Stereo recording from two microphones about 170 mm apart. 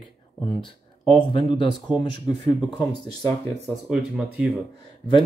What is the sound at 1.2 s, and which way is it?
Speech, 30° left (ahead or behind).